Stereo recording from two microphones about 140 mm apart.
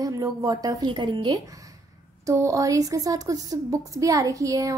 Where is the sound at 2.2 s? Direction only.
20° right (ahead or behind).